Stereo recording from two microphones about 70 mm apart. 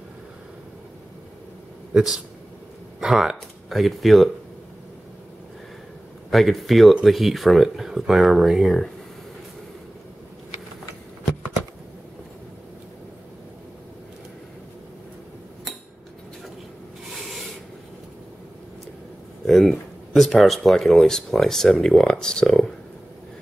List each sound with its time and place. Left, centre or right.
3.0 s speech: centre
6.3 s speech: centre
19.4 s a sound: centre
20.2 s speech: centre